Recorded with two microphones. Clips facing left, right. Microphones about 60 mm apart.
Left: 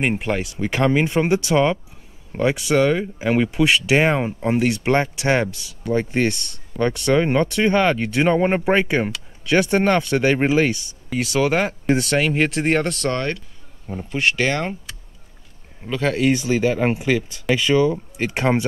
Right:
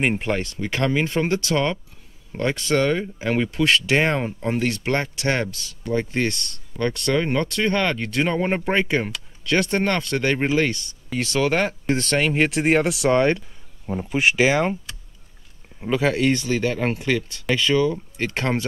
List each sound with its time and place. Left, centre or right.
0.0 s speech: centre
15.8 s speech: centre